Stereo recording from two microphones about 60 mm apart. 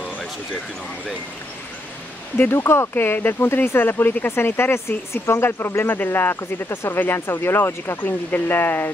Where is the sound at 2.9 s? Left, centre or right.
Left.